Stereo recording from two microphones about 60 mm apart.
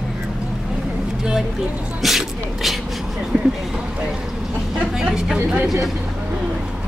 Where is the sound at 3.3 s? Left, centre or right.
Centre.